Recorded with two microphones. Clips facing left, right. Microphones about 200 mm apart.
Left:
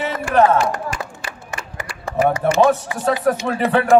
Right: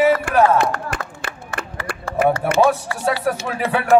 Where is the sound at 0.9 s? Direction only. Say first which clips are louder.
Right 1 dB; 55° right (ahead or behind).